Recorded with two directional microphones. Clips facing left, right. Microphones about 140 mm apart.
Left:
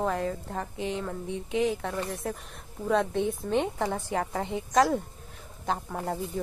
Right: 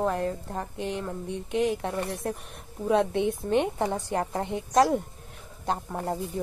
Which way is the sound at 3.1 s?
60° right (ahead or behind).